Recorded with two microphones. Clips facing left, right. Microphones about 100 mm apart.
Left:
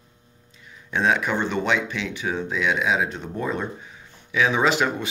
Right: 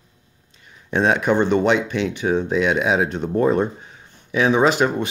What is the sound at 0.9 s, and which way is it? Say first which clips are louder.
Speech: right 5 dB; 50° right (ahead or behind).